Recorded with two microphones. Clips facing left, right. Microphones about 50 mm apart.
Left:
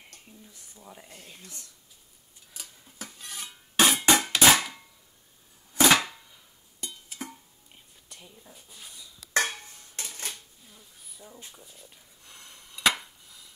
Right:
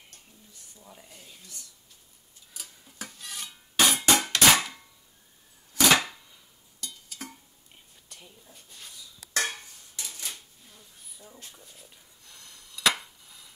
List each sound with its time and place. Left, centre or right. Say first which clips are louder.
0.7 s speech: left 3 dB; centre
1.2 s speech: left 2 dB; left
2.5 s stir: even; centre
3.8 s music: left 1 dB; centre
5.9 s a sound: even; centre
6.8 s music: left 2 dB; left
8.5 s speech: right 1 dB; centre
8.9 s dishes: left 4 dB; left
9.8 s dishes: left 2 dB; left
10.7 s a sound: even; centre
11.3 s speech: even; centre
11.6 s speech: left 1 dB; centre
12.3 s a sound: left 2 dB; left